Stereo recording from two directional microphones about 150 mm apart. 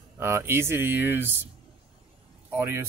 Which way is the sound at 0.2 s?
15° right (ahead or behind).